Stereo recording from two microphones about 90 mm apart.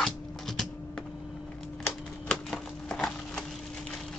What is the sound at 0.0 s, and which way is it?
Typewriter, 5° left (ahead or behind).